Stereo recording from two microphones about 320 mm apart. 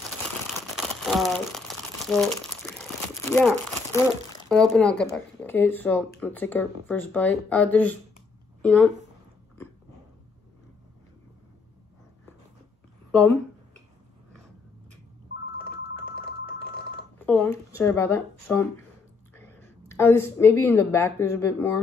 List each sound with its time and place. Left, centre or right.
0.7 s crumpling: centre
4.5 s speech: centre
13.1 s speech: centre
16.0 s telephone: left
17.3 s a woman's voice: centre